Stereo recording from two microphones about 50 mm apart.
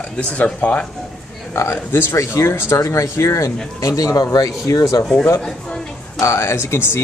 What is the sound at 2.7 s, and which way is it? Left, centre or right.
Speech, left.